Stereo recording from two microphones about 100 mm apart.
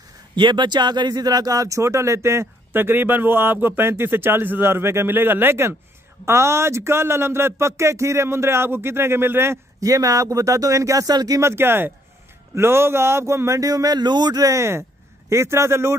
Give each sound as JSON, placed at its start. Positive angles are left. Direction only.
{"t": 0.4, "sound": "a man's voice", "side_deg": -50}